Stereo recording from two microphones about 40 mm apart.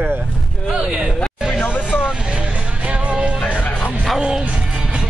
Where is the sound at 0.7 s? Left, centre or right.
Centre.